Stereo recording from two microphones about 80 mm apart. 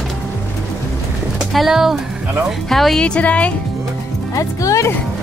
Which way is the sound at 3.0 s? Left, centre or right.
Centre.